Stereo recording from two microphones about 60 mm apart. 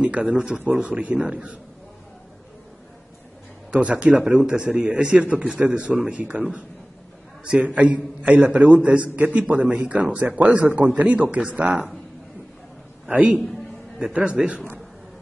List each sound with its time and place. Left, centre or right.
0.0 s a man's voice: centre
3.7 s a man's voice: centre
4.2 s a man's voice: centre
7.4 s a man's voice: right
13.1 s a man's voice: right